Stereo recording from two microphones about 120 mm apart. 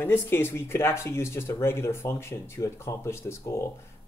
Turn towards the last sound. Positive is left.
turn(degrees=25)  # may be behind; listen again after turning